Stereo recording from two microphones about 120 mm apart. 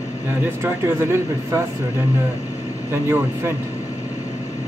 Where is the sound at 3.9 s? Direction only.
70° left (ahead or behind).